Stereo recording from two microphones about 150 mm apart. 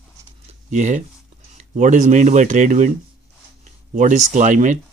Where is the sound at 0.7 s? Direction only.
55° right (ahead or behind).